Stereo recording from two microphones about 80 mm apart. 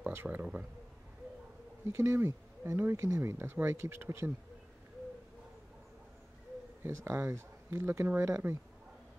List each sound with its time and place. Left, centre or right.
0.1 s speech: right
1.9 s speech: right
6.8 s speech: right